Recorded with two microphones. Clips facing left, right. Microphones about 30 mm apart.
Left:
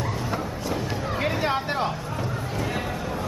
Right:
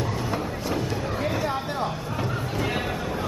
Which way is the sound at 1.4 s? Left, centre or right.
Left.